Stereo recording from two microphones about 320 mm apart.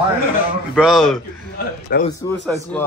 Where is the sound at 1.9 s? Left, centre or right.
Left.